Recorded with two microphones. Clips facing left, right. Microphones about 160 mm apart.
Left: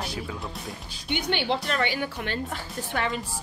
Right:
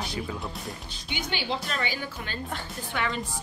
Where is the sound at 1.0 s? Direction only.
60° left (ahead or behind).